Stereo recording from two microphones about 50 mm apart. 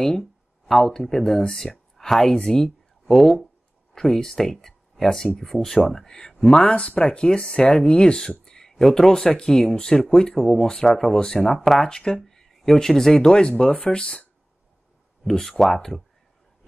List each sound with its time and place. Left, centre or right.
0.0 s speech: centre
6.6 s speech: left
15.4 s speech: centre